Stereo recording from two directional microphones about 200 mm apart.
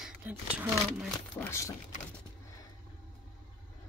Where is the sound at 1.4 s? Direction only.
15° left (ahead or behind).